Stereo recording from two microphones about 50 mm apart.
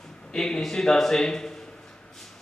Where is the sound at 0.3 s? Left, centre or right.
Centre.